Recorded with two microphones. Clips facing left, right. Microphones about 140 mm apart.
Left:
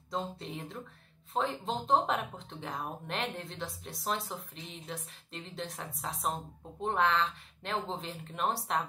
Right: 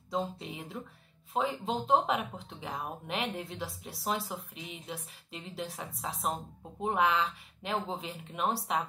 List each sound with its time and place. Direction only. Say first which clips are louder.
0.1 s speech: right 2 dB; centre (ahead or behind)